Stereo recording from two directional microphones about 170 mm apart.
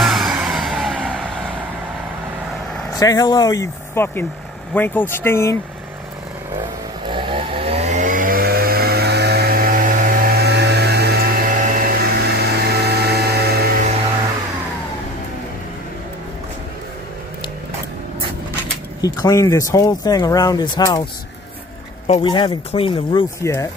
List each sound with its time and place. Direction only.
0.0 s music: centre (ahead or behind)
3.0 s speech: 20° left (ahead or behind)
7.1 s chainsaw: 30° right (ahead or behind); by 11.1 s 75° right (ahead or behind)
11.7 s vacuum cleaner: 60° right (ahead or behind)
18.9 s speech: 20° left (ahead or behind)
22.2 s speech: 25° left (ahead or behind)
23.4 s speech: 15° left (ahead or behind)